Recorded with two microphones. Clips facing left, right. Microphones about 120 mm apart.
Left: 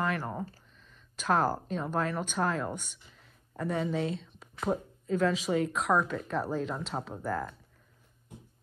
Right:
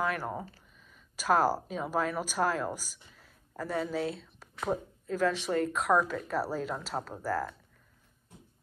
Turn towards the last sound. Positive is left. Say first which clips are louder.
# right 1 dB
turn(degrees=0)  # may be behind; listen again after turning